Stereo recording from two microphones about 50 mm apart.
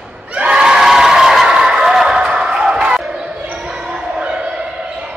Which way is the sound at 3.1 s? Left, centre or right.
Centre.